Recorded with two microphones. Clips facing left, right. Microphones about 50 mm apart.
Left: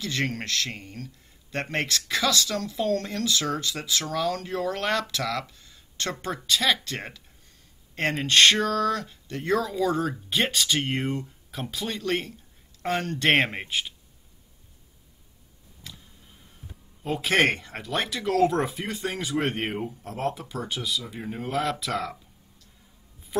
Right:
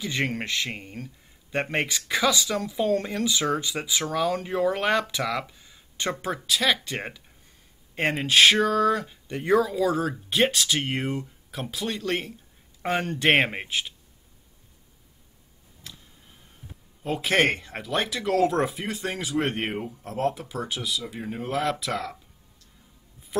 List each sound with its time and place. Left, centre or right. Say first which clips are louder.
0.0 s a man's voice: right 1 dB; centre
17.0 s speech: even; centre